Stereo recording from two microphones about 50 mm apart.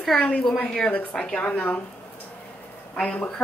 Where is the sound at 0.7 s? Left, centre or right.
Centre.